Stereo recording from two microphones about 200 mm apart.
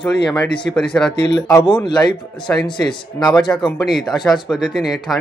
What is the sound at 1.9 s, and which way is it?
Speech, 20° left (ahead or behind).